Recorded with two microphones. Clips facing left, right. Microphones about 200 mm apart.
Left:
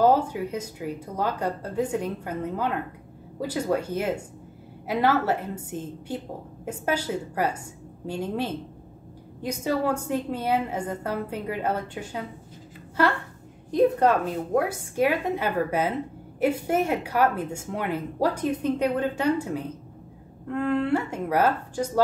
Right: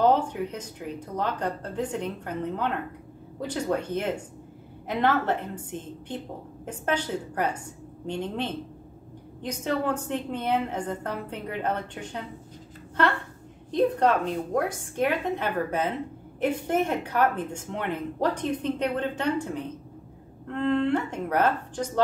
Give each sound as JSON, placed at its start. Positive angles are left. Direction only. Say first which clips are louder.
{"t": 0.0, "sound": "a woman's voice", "louder": "left 2 dB", "side_deg": 5}
{"t": 13.7, "sound": "a woman's voice", "louder": "left 2 dB", "side_deg": 10}